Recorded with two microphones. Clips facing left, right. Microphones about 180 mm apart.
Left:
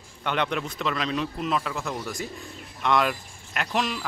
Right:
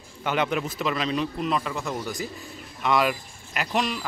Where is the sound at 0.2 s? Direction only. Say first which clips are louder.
Right 2 dB; 5° right (ahead or behind).